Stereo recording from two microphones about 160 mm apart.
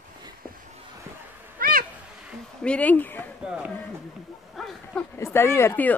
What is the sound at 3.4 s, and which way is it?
Speech, 5° right (ahead or behind).